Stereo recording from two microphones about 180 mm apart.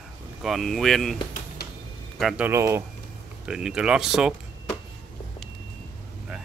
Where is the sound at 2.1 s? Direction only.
5° right (ahead or behind).